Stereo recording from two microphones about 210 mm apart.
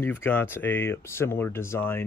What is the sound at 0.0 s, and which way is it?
Speech, 10° left (ahead or behind).